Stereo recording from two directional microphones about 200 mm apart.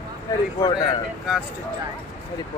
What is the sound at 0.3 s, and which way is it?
Speech, 15° left (ahead or behind).